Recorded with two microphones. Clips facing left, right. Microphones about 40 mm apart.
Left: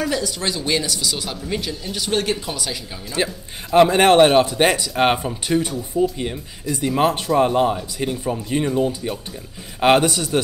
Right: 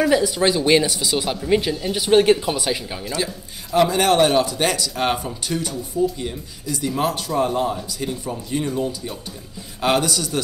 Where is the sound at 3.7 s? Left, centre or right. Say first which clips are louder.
Left 4 dB; left.